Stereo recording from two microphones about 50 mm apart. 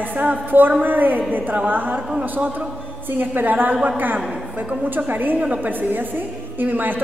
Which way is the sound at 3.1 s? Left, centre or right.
Right.